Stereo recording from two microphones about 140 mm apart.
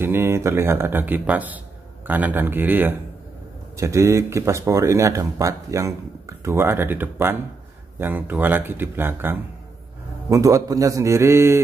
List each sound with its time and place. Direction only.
0.0 s speech: 15° right (ahead or behind)